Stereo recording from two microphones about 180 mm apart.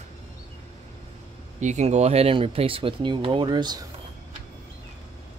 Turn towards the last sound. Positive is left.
turn(degrees=-25)  # may be behind; listen again after turning